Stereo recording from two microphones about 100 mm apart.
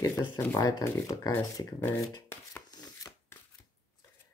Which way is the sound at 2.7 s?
45° left (ahead or behind).